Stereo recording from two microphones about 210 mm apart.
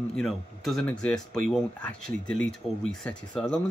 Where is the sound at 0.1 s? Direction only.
Centre (ahead or behind).